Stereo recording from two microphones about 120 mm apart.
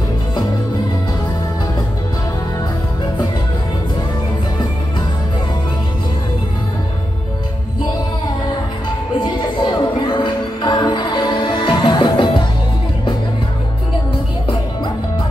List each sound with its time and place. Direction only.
9.2 s music: 35° left (ahead or behind)